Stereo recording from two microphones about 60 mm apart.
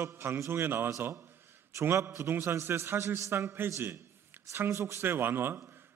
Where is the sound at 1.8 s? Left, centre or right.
Right.